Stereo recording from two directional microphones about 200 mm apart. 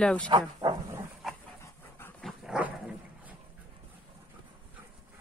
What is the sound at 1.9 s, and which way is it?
Dog, 10° left (ahead or behind).